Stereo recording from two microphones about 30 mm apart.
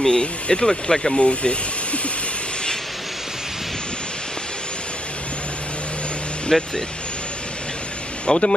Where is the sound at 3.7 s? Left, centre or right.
Left.